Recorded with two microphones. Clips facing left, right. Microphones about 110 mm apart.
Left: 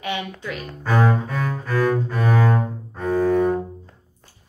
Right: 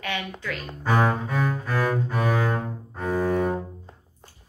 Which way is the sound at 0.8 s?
10° right (ahead or behind).